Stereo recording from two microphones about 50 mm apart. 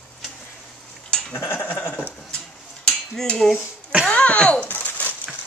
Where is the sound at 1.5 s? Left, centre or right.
Left.